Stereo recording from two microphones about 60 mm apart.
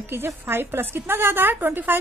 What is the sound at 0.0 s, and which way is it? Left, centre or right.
A woman's voice, right.